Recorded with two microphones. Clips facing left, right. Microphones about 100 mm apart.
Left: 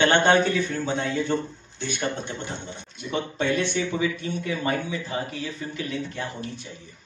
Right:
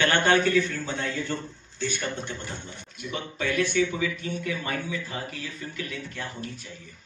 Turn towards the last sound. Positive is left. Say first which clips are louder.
# left 5 dB
turn(degrees=25)  # may be behind; listen again after turning